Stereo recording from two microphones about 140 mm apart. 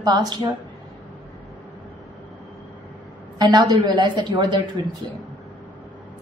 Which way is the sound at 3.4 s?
30° right (ahead or behind).